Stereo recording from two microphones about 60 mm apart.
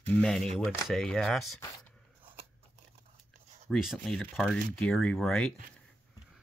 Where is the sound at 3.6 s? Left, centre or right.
Centre.